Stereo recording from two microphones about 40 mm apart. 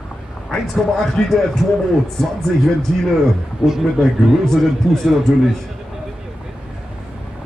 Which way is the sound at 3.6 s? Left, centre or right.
Right.